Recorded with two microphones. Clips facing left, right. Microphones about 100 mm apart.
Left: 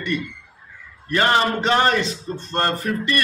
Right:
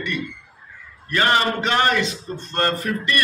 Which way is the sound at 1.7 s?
35° left (ahead or behind).